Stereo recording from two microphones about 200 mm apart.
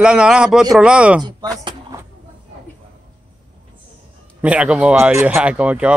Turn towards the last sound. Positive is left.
turn(degrees=-5)  # may be behind; listen again after turning